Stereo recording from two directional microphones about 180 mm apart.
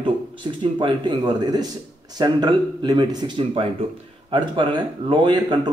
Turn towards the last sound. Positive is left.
turn(degrees=-25)  # may be behind; listen again after turning